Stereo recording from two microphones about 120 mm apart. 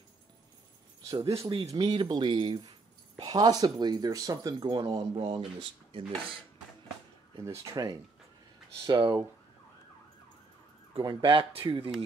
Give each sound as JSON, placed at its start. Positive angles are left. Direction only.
{"t": 1.0, "sound": "speech", "side_deg": -30}
{"t": 7.4, "sound": "speech", "side_deg": -25}
{"t": 8.8, "sound": "speech", "side_deg": -40}
{"t": 11.0, "sound": "speech", "side_deg": -40}